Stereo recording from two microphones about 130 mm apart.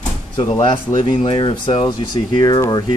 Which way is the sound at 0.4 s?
40° left (ahead or behind).